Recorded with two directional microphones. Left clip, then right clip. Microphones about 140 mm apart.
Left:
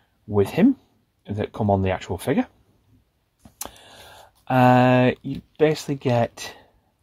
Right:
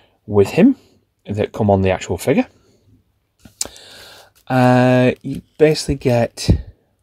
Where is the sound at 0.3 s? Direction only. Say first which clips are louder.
Right 6 dB; 30° right (ahead or behind).